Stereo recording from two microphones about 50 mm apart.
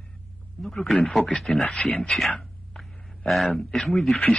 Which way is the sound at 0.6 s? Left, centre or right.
Centre.